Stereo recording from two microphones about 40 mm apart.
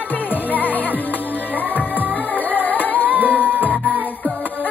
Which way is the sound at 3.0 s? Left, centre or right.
Right.